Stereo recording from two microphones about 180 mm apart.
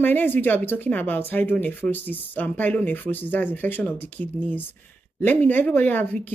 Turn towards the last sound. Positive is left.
turn(degrees=10)  # may be behind; listen again after turning